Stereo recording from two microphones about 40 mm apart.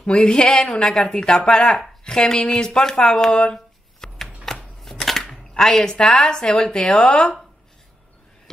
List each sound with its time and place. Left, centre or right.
0.0 s speech: left
1.2 s speech: left
3.5 s a sound: centre
4.8 s speech: centre